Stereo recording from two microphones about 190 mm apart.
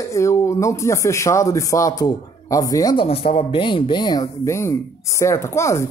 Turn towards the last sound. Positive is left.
turn(degrees=15)  # may be behind; listen again after turning